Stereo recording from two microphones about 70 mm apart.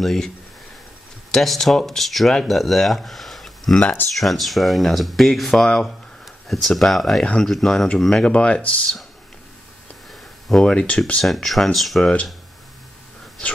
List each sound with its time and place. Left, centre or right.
0.0 s speech: centre
1.3 s speech: centre
3.8 s speech: left
4.2 s speech: centre
10.5 s speech: centre
11.2 s speech: centre
12.0 s speech: centre